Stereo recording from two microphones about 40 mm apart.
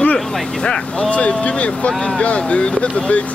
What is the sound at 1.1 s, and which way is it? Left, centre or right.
Speech, left.